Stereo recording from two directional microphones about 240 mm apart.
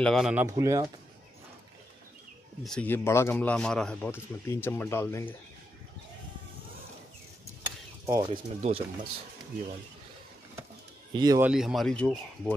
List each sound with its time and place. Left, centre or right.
0.0 s speech: centre
2.6 s a man's voice: centre
8.1 s speech: centre
11.1 s speech: centre